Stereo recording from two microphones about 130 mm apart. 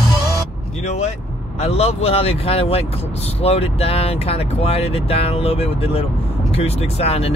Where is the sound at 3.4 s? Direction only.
50° left (ahead or behind).